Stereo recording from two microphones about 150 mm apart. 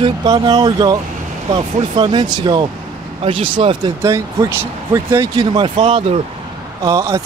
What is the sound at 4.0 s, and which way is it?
Speech, 20° right (ahead or behind).